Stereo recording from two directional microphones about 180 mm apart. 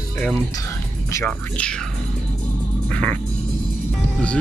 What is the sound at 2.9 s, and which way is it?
Music, 5° left (ahead or behind).